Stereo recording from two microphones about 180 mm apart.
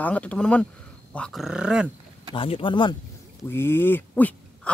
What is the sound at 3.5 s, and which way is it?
Speech, 15° left (ahead or behind).